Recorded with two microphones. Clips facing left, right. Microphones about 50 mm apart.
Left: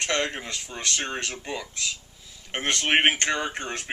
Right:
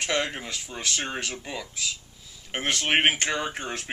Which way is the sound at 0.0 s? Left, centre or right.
Centre.